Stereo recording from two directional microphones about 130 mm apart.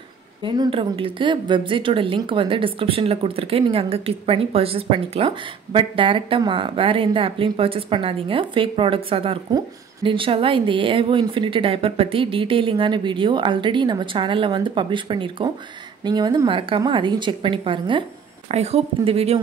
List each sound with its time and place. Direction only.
0.4 s a woman's voice: 40° right (ahead or behind)
18.5 s speech: 55° right (ahead or behind)